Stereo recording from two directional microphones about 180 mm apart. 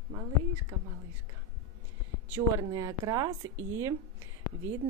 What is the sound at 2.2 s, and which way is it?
Speech, 15° right (ahead or behind).